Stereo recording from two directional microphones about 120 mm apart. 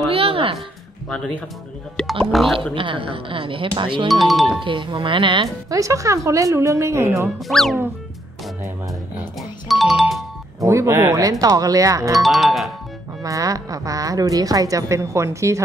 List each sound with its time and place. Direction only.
0.1 s a sound: 50° right (ahead or behind)
1.0 s speech: 10° left (ahead or behind)
2.0 s music: 5° left (ahead or behind)
2.3 s speech: centre (ahead or behind)
2.7 s speech: 45° right (ahead or behind)
4.1 s speech: centre (ahead or behind)
4.6 s speech: 45° right (ahead or behind)
5.7 s a woman's voice: 25° right (ahead or behind)
7.3 s speech: centre (ahead or behind)
8.6 s a sound: 15° right (ahead or behind)
9.7 s music: centre (ahead or behind)
10.6 s a woman's voice: 25° right (ahead or behind)
12.1 s speech: centre (ahead or behind)
13.2 s a woman's voice: 30° right (ahead or behind)